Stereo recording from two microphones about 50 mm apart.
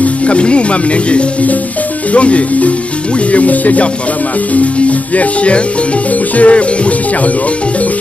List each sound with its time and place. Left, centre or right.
0.0 s speech: left